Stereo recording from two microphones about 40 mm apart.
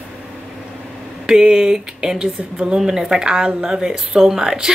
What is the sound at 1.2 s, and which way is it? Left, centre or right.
A woman's voice, centre.